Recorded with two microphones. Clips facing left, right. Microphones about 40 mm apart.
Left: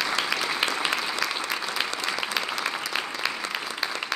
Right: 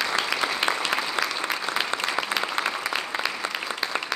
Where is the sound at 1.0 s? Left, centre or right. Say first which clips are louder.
Right 2 dB; centre.